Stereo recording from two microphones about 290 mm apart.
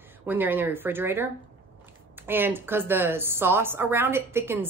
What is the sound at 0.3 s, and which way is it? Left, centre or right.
Speech, centre.